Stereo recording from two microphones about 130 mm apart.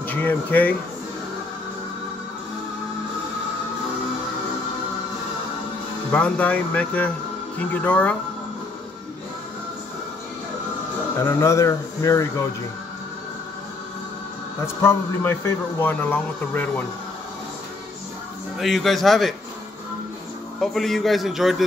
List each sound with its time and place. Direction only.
0.0 s speech: 15° left (ahead or behind)
6.1 s a man's voice: 10° left (ahead or behind)
11.1 s speech: 20° left (ahead or behind)
14.8 s a man's voice: 20° left (ahead or behind)
18.6 s a man's voice: centre (ahead or behind)
20.6 s a man's voice: centre (ahead or behind)